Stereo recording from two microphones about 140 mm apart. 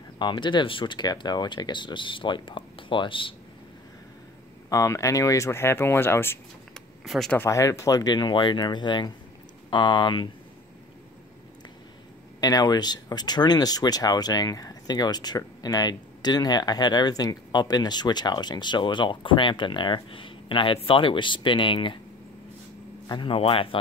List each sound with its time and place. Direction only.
0.2 s speech: 35° left (ahead or behind)
4.6 s speech: 20° left (ahead or behind)
6.7 s a sound: 5° left (ahead or behind)
7.3 s speech: 20° left (ahead or behind)
12.4 s speech: 25° left (ahead or behind)
23.0 s speech: 35° left (ahead or behind)